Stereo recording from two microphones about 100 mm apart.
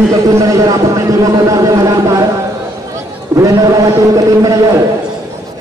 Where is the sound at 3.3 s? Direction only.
35° right (ahead or behind).